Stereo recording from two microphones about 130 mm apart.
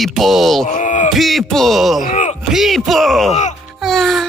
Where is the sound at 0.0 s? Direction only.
Centre (ahead or behind).